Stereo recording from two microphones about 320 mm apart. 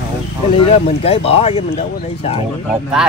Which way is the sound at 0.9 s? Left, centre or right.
Centre.